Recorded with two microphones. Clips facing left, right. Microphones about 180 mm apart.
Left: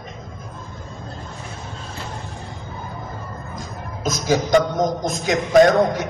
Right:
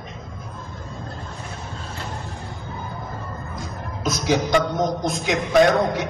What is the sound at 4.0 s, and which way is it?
Music, 45° left (ahead or behind).